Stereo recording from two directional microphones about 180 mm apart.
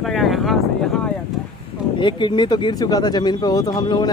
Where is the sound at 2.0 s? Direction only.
25° left (ahead or behind).